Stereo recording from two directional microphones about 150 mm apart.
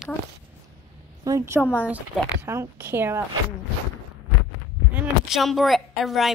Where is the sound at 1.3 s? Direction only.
20° right (ahead or behind).